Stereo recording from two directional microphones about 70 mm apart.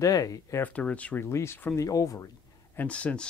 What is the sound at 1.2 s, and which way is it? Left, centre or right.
Speech, left.